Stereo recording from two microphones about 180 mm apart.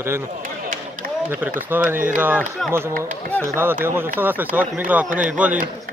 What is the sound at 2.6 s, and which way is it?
Speech, 5° left (ahead or behind).